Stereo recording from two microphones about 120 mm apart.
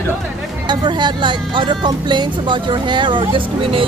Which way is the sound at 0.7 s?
40° right (ahead or behind).